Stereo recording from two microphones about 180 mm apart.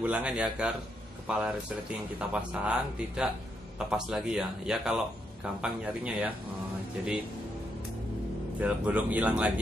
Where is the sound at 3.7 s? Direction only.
5° right (ahead or behind).